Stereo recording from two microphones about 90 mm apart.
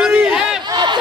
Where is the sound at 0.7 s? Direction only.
55° right (ahead or behind).